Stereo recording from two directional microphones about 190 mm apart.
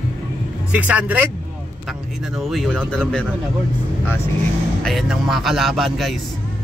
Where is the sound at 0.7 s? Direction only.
5° right (ahead or behind).